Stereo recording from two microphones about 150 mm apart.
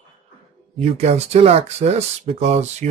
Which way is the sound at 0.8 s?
45° right (ahead or behind).